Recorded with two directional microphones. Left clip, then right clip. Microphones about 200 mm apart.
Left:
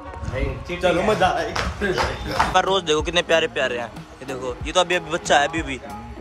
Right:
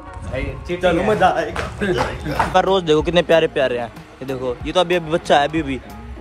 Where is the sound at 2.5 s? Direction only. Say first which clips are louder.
Right 5 dB; 10° left (ahead or behind).